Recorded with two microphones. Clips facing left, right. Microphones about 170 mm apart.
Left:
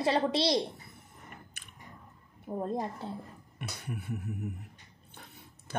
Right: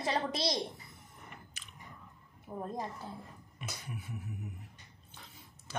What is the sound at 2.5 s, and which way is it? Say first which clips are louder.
Speech: left 7 dB; 25° left (ahead or behind).